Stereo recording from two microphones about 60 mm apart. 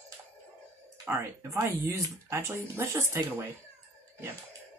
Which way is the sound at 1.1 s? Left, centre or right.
Right.